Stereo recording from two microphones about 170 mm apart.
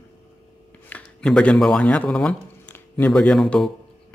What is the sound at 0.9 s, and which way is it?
Speech, 5° left (ahead or behind).